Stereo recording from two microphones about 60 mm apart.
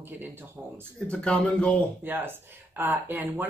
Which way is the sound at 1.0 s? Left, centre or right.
Centre.